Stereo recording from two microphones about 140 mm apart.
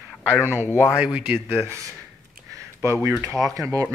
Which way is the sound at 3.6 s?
25° right (ahead or behind).